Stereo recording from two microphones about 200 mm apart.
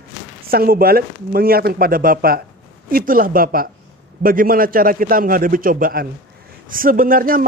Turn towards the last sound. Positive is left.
turn(degrees=-45)  # may be behind; listen again after turning